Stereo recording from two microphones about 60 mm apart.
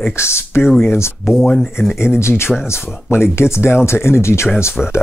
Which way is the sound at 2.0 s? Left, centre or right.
Left.